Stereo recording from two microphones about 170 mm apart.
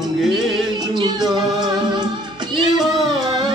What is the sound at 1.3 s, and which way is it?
Music, 25° right (ahead or behind).